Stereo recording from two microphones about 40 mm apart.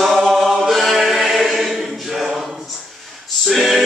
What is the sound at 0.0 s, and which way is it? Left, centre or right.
Chant, centre.